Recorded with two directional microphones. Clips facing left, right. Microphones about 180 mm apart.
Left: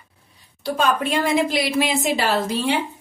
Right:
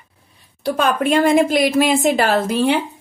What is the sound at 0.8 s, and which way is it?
A woman's voice, 55° right (ahead or behind).